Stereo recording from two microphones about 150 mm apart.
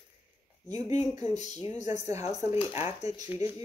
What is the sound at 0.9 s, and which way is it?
Speech, 50° left (ahead or behind).